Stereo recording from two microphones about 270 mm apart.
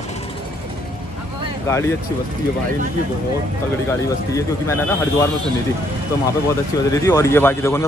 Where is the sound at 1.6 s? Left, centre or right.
Centre.